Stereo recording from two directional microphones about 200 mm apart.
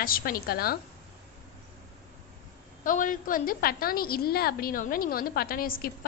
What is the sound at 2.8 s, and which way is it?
A woman's voice, 40° left (ahead or behind).